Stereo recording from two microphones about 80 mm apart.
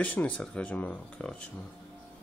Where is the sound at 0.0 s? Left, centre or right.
Centre.